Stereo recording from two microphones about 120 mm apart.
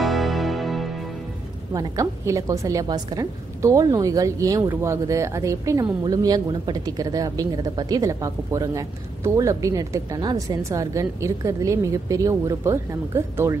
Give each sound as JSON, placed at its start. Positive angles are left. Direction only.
{"t": 0.0, "sound": "music", "side_deg": 0}
{"t": 1.7, "sound": "speech", "side_deg": -30}